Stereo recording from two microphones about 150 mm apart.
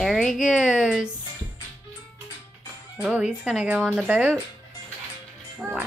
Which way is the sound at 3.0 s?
5° right (ahead or behind).